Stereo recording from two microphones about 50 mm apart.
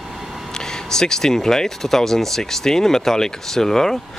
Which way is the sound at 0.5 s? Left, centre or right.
Centre.